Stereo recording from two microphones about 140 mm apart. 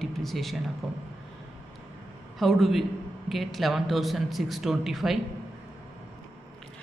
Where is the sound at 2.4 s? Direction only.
Centre (ahead or behind).